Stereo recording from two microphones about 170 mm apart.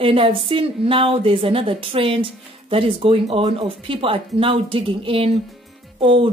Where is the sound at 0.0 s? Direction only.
35° right (ahead or behind).